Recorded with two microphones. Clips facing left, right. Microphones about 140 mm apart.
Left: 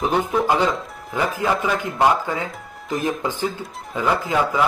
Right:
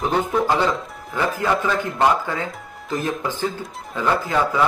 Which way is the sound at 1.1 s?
15° left (ahead or behind).